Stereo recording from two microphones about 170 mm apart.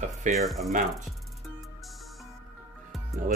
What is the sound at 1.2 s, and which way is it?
Music, centre (ahead or behind).